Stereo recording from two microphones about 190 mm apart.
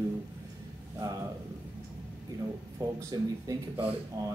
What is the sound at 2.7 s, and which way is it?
Speech, 15° right (ahead or behind).